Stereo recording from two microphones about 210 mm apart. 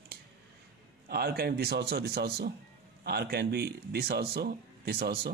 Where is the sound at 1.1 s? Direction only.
50° right (ahead or behind).